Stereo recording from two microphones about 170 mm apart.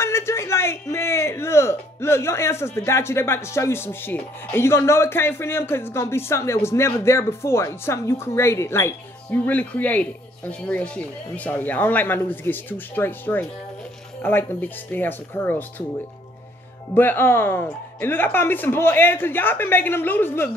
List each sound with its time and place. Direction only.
0.0 s speech: 15° left (ahead or behind)
16.9 s speech: 10° left (ahead or behind)